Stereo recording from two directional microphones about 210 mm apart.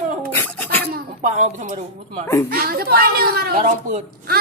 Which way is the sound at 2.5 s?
45° right (ahead or behind).